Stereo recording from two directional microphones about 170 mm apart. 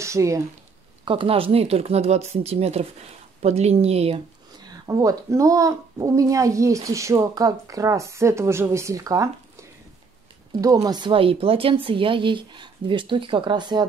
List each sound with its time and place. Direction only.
0.0 s speech: 15° right (ahead or behind)
1.0 s speech: 30° right (ahead or behind)
4.6 s speech: 20° right (ahead or behind)